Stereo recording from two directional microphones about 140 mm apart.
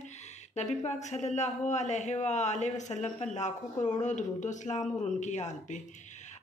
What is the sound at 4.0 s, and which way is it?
Speech, 60° left (ahead or behind).